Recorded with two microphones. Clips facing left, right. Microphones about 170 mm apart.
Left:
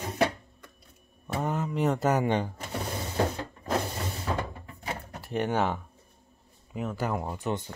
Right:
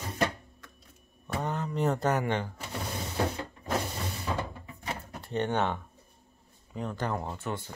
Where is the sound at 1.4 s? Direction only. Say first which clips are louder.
Left 2 dB; 5° left (ahead or behind).